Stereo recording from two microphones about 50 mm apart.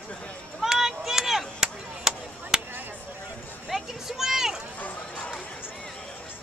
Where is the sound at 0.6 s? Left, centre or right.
Centre.